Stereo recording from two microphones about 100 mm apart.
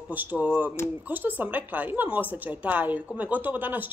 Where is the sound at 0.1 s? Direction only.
15° right (ahead or behind).